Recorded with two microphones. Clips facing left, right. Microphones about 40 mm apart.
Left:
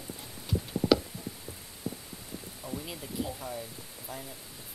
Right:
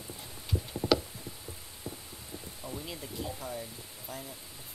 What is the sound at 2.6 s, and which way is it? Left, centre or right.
Speech, centre.